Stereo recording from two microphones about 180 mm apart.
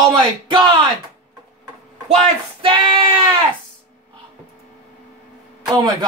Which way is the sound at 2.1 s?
30° right (ahead or behind).